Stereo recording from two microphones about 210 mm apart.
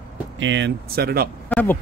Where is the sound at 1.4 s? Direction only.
10° left (ahead or behind).